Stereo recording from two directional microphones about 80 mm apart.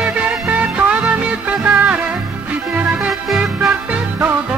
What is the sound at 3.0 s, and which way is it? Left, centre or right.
Music, centre.